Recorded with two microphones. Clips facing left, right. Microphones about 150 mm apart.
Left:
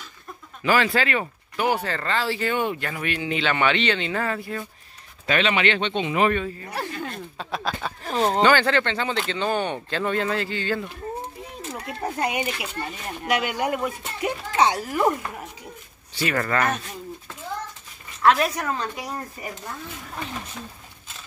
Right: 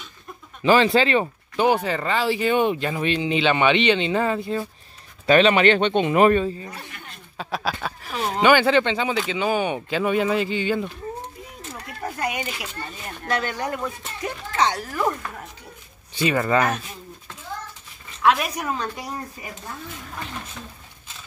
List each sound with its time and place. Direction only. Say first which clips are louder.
0.6 s speech: right 4 dB; 25° right (ahead or behind)
1.8 s speech: right 3 dB; 15° right (ahead or behind)
5.2 s speech: right 6 dB; 35° right (ahead or behind)
6.8 s speech: left 10 dB; 90° left
7.3 s speech: right 4 dB; centre (ahead or behind)
8.4 s speech: right 5 dB; 15° right (ahead or behind)
11.5 s a sound: left 4 dB; 25° left (ahead or behind)
12.8 s speech: left 3 dB; 10° left (ahead or behind)
16.2 s speech: right 3 dB; 20° right (ahead or behind)
18.2 s speech: left 1 dB; 5° right (ahead or behind)